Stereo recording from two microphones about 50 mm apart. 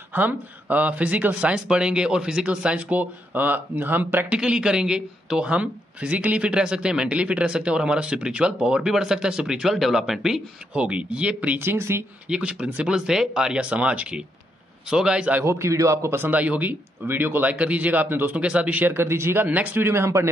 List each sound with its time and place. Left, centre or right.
0.1 s speech: right
4.3 s speech: centre
10.7 s speech: right
11.5 s speech: right
12.3 s speech: right
12.9 s speech: centre
13.7 s speech: right
15.4 s a man's voice: right
16.2 s speech: right
17.6 s speech: right
19.0 s speech: right
19.4 s speech: right
19.8 s speech: right